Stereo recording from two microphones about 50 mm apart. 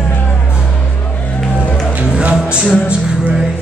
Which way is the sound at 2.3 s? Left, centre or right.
Centre.